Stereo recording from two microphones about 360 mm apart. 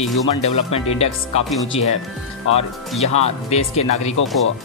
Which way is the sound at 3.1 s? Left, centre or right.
Centre.